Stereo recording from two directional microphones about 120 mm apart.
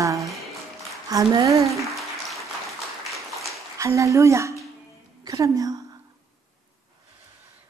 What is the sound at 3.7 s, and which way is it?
A woman's voice, 25° right (ahead or behind).